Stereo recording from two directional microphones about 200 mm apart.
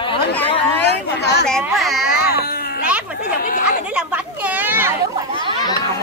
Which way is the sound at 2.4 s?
50° left (ahead or behind).